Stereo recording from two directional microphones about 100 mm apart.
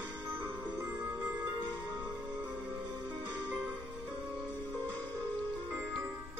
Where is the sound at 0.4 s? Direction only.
20° right (ahead or behind).